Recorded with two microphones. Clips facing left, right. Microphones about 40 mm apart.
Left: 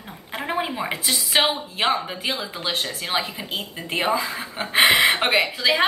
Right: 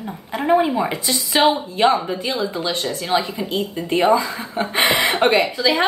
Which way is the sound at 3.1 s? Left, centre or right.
Centre.